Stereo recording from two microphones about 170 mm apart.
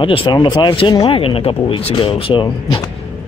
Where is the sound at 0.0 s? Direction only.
30° left (ahead or behind).